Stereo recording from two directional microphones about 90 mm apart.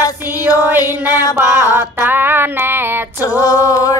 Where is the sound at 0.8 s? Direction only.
40° left (ahead or behind).